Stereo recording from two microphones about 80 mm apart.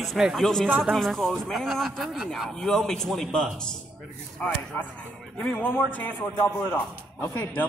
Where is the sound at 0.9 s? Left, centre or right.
Centre.